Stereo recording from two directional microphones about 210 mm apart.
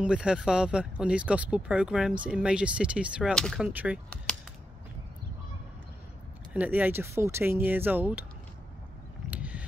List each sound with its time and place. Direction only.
0.0 s speech: 5° right (ahead or behind)
6.5 s speech: 5° right (ahead or behind)
9.3 s a sound: 5° right (ahead or behind)